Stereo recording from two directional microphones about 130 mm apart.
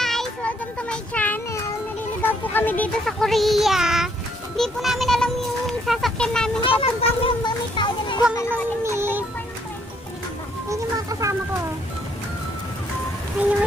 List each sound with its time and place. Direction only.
0.0 s child singing: centre (ahead or behind)
2.2 s speech: 15° left (ahead or behind)
3.1 s speech: centre (ahead or behind)
6.6 s a child's voice: 45° left (ahead or behind)
7.4 s a sound: 35° left (ahead or behind)
8.8 s music: 20° right (ahead or behind)
10.7 s a sound: 25° right (ahead or behind)